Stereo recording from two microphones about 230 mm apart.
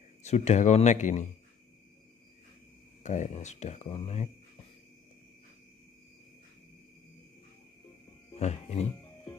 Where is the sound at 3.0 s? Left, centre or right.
Left.